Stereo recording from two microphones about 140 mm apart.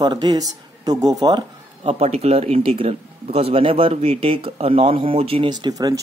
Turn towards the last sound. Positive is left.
turn(degrees=-30)  # may be behind; listen again after turning